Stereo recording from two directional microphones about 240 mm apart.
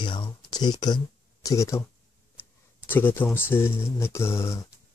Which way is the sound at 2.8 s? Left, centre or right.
Centre.